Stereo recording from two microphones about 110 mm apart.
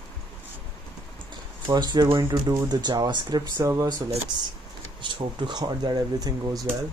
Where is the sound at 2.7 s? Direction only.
40° right (ahead or behind).